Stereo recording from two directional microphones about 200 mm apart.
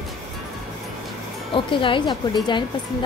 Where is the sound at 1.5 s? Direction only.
25° left (ahead or behind).